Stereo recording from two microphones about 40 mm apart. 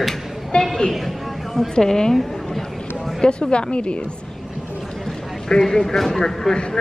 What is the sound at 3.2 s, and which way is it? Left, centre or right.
Speech, left.